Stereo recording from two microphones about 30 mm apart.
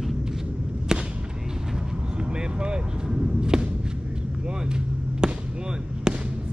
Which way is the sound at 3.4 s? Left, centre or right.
Right.